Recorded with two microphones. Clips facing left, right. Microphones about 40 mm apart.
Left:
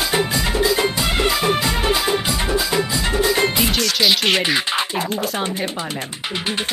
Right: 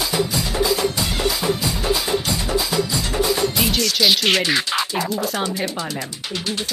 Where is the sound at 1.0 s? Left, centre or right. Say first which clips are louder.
Left 3 dB; left.